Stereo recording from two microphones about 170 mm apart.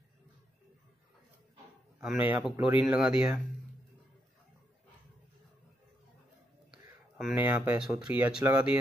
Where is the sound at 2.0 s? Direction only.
5° right (ahead or behind).